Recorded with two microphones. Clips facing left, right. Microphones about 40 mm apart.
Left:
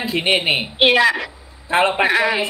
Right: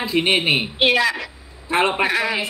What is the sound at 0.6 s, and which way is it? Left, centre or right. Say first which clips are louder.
Speech: left 3 dB; left.